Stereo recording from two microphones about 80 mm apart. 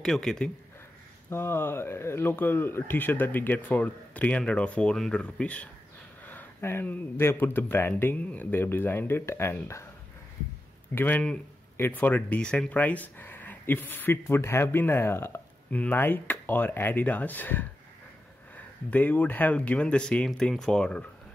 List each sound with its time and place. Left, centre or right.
0.0 s speech: centre
1.3 s speech: left; by 4.9 s centre
4.9 s speech: centre
5.2 s speech: centre
6.2 s speech: left
11.0 s speech: left
18.9 s speech: left